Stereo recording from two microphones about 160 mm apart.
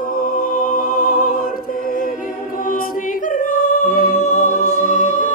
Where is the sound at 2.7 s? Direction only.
60° left (ahead or behind).